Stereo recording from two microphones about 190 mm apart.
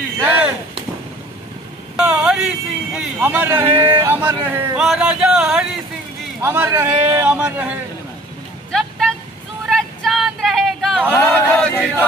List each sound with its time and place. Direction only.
0.2 s chop: 10° right (ahead or behind)
2.0 s a man's voice: 5° right (ahead or behind)
9.7 s a sound: centre (ahead or behind)
11.1 s speech: 10° left (ahead or behind)